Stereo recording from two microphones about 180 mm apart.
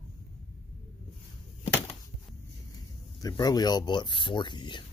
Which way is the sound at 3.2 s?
20° left (ahead or behind).